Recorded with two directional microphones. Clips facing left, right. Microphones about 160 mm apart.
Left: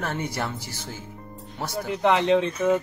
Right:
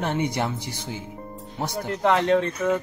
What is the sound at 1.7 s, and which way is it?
Speech, 5° left (ahead or behind).